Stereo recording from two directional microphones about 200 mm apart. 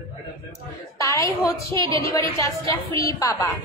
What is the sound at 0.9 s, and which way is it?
A woman's voice, 15° left (ahead or behind).